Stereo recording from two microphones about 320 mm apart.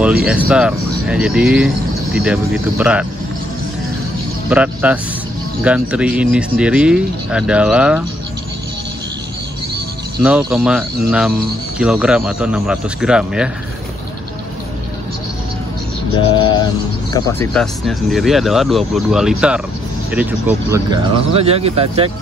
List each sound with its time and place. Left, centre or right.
0.0 s speech: centre
4.5 s speech: centre
10.2 s speech: centre
17.1 s speech: centre